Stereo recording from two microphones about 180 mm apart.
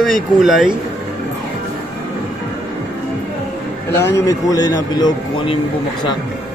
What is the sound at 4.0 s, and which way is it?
A man's voice, 15° left (ahead or behind).